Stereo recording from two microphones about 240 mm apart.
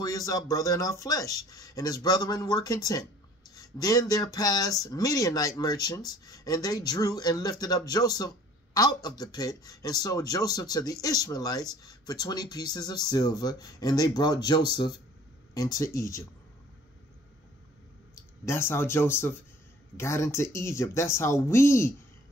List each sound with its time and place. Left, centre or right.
0.0 s speech: centre
18.4 s speech: centre